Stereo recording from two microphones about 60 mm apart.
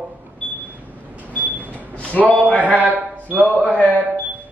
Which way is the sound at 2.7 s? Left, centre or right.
Right.